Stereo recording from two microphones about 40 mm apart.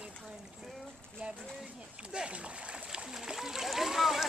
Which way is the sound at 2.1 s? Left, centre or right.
Right.